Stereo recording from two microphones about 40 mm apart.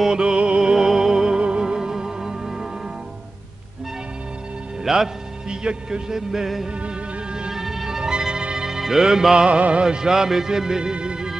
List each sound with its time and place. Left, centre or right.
0.1 s music: right
4.8 s a man's voice: centre
7.5 s music: centre
9.6 s music: right
9.8 s speech: centre